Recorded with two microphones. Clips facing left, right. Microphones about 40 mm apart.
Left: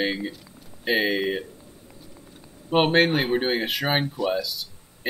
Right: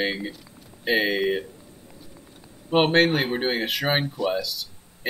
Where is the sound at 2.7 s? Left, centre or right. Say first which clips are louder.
Even; centre.